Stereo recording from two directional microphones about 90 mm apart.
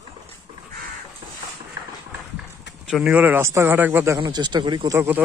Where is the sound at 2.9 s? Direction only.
5° right (ahead or behind).